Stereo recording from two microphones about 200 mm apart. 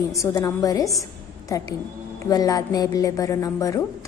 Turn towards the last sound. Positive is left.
turn(degrees=15)  # may be behind; listen again after turning